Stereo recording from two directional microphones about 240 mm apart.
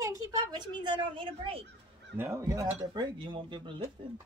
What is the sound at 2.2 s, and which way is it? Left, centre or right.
A woman's voice, centre.